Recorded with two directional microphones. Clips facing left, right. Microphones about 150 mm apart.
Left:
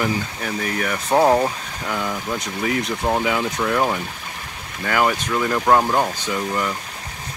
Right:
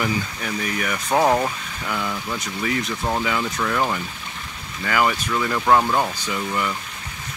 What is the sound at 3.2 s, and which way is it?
Speech, 10° left (ahead or behind).